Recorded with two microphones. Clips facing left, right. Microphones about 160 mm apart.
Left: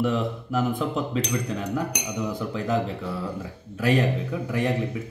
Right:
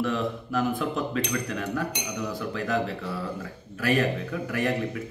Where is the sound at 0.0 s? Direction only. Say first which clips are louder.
Left 2 dB; 25° left (ahead or behind).